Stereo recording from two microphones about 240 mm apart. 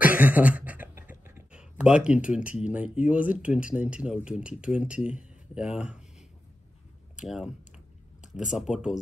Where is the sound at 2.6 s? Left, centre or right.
Centre.